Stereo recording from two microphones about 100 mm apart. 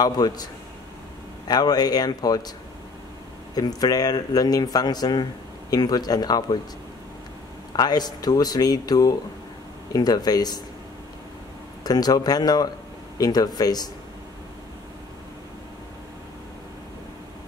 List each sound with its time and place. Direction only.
0.0 s speech: 40° left (ahead or behind)
1.5 s speech: 40° left (ahead or behind)
3.5 s speech: 40° left (ahead or behind)
7.7 s speech: 45° left (ahead or behind)
11.8 s speech: 40° left (ahead or behind)